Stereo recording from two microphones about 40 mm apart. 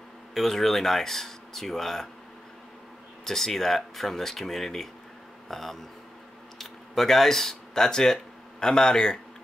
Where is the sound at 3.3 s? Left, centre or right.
Centre.